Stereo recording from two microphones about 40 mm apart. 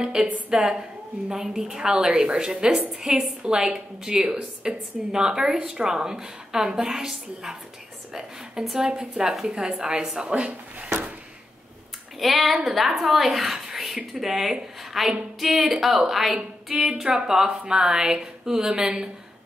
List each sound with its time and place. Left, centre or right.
0.0 s a woman's voice: centre
12.2 s a woman's voice: centre
16.8 s a woman's voice: centre